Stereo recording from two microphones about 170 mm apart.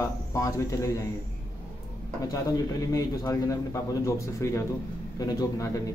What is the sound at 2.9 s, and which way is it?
A man's voice, 15° left (ahead or behind).